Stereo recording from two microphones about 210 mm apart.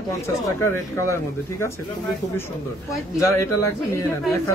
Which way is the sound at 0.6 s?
10° left (ahead or behind).